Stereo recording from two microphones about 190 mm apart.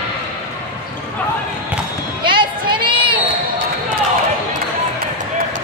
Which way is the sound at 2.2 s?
25° right (ahead or behind).